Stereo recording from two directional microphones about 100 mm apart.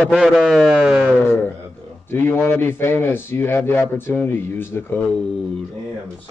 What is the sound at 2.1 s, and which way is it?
Speech, 20° left (ahead or behind).